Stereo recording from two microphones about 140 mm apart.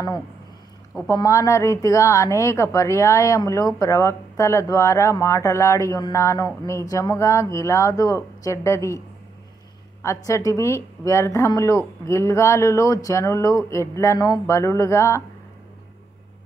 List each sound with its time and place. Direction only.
1.0 s speech: 25° left (ahead or behind)
10.0 s speech: 25° left (ahead or behind)